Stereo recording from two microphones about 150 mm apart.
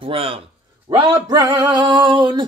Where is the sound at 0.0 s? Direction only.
40° right (ahead or behind).